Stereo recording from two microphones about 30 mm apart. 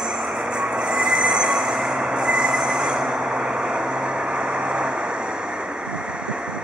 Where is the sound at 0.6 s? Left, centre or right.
Right.